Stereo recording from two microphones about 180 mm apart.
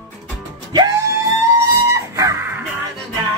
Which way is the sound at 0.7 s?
20° right (ahead or behind).